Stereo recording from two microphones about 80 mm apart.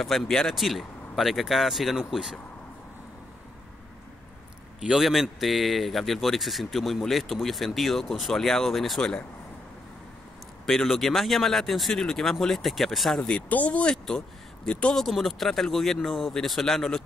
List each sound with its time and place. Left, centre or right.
0.0 s a man's voice: centre
4.7 s a man's voice: centre
10.7 s a man's voice: centre
13.2 s speech: centre
15.0 s a man's voice: centre